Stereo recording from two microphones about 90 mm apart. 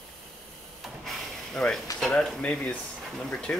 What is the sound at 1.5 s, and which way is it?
Speech, 10° left (ahead or behind).